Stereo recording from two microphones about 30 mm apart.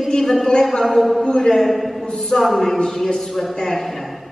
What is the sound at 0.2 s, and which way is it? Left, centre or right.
A woman's voice, centre.